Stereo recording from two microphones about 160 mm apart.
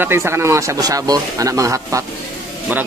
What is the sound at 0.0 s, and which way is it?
Speech, 15° right (ahead or behind).